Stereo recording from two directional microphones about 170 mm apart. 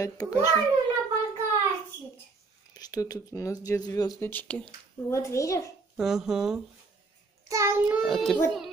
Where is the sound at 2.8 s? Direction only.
20° left (ahead or behind).